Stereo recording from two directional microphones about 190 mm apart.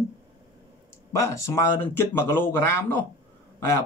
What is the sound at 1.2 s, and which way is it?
Speech, 15° left (ahead or behind).